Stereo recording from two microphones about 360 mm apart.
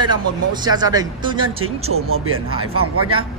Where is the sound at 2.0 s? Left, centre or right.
Right.